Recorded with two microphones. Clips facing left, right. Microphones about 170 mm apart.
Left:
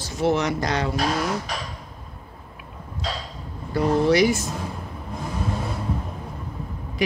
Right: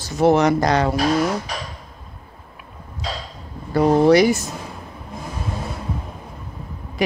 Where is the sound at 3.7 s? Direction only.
50° right (ahead or behind).